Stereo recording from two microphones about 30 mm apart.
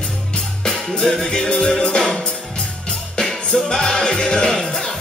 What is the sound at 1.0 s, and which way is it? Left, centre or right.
Music, centre.